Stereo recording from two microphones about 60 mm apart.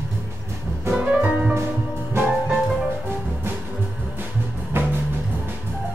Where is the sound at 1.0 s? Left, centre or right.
Centre.